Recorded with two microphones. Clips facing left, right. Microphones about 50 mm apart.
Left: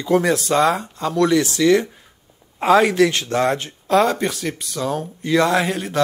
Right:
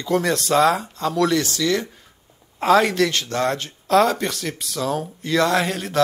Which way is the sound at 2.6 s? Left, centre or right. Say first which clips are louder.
Left 2 dB; centre.